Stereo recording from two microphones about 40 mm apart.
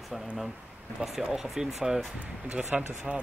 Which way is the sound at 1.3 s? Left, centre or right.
Centre.